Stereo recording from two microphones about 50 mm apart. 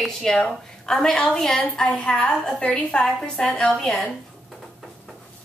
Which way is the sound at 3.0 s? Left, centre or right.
Centre.